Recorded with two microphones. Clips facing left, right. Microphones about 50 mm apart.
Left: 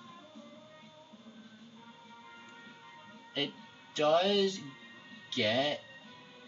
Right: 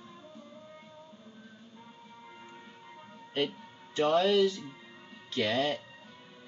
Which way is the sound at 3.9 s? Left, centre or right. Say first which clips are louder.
Right 2 dB; right.